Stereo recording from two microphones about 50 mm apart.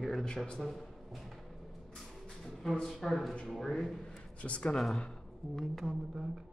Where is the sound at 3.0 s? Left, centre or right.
Centre.